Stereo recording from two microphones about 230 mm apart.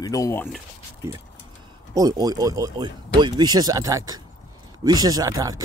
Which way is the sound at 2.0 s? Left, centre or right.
Centre.